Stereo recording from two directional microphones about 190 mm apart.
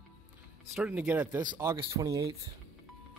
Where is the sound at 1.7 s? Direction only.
20° right (ahead or behind).